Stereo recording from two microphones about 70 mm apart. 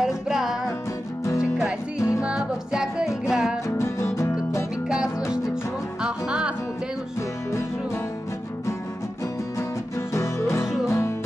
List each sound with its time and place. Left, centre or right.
0.0 s music: centre
2.0 s music: left
2.2 s music: centre
3.6 s music: left
4.8 s music: centre
10.9 s music: left